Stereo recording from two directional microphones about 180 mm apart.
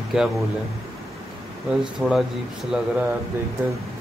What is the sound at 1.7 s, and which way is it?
Speech, 5° right (ahead or behind).